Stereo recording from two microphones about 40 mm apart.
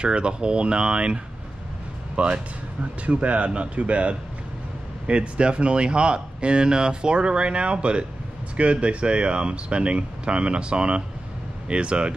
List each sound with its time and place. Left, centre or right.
0.0 s speech: right